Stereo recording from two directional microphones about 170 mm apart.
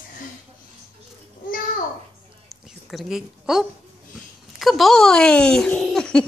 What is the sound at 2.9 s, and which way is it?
Speech, centre (ahead or behind).